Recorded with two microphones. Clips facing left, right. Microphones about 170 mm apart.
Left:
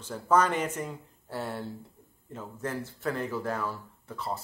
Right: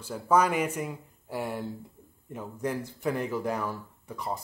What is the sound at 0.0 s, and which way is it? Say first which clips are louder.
Speech: right 1 dB; 10° right (ahead or behind).